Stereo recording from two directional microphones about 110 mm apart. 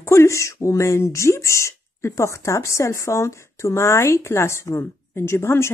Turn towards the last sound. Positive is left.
turn(degrees=25)  # may be behind; listen again after turning